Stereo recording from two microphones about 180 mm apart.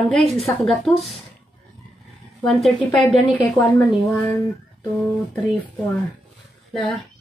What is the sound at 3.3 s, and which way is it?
Speech, 15° left (ahead or behind).